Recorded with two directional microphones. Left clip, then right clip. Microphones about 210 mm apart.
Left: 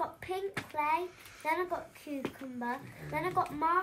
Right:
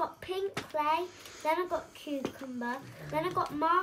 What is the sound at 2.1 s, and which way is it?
Speech, 20° right (ahead or behind).